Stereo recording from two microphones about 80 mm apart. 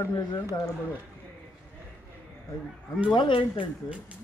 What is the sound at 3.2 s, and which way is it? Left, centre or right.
Speech, left.